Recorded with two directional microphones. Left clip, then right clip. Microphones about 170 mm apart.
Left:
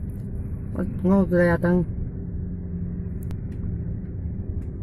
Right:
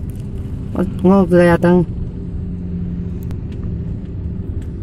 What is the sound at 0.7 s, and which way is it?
Speech, 10° right (ahead or behind).